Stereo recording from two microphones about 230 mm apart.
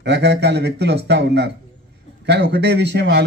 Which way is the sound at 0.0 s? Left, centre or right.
Right.